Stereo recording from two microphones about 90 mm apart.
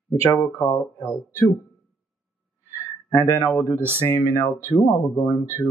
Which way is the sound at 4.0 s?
20° left (ahead or behind).